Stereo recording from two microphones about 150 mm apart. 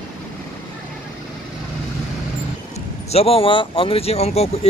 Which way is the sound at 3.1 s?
40° left (ahead or behind).